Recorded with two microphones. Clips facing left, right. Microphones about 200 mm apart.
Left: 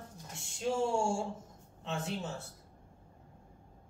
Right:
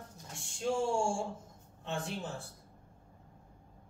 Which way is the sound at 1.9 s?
5° left (ahead or behind).